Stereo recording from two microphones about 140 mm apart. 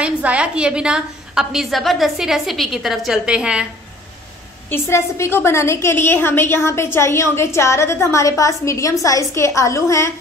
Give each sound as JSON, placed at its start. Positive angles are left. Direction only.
{"t": 0.0, "sound": "a woman's voice", "side_deg": -10}
{"t": 4.6, "sound": "a woman's voice", "side_deg": 15}